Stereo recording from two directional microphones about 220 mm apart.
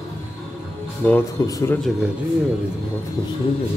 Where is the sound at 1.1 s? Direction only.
10° left (ahead or behind).